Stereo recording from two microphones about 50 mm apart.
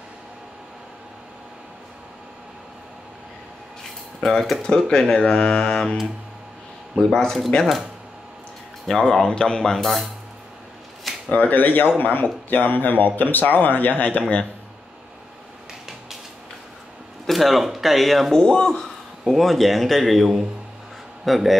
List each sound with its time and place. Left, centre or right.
4.2 s speech: centre
4.6 s speech: centre
7.0 s speech: centre
8.8 s speech: centre
11.2 s speech: left
17.3 s speech: centre
18.4 s a man's voice: centre